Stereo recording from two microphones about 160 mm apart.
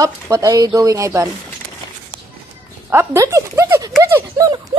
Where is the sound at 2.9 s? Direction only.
15° right (ahead or behind).